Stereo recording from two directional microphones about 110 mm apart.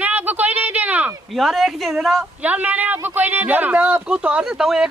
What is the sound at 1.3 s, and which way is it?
Speech, centre (ahead or behind).